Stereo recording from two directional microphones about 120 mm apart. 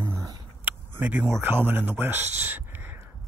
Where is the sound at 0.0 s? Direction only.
25° right (ahead or behind).